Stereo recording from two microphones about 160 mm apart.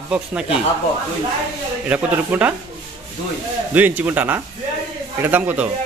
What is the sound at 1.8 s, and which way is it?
Speech, 10° right (ahead or behind).